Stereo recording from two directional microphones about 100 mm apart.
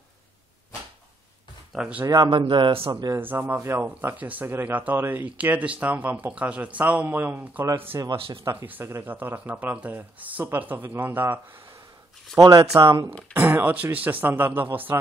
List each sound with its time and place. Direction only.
1.7 s speech: 10° right (ahead or behind)
2.2 s speech: 55° right (ahead or behind)
2.9 s speech: 45° right (ahead or behind)
3.2 s speech: 20° right (ahead or behind)
7.9 s speech: 35° right (ahead or behind)
8.5 s speech: 25° right (ahead or behind)
12.4 s speech: 45° right (ahead or behind)
13.3 s speech: 20° right (ahead or behind)